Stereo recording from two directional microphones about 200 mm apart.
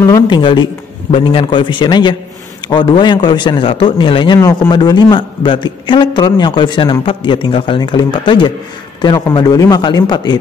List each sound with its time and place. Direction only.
0.0 s a man's voice: 25° left (ahead or behind)